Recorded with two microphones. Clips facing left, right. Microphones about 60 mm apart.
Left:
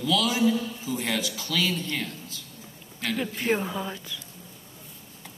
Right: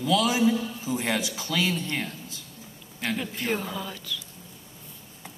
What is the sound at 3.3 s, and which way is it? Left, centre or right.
Speech, centre.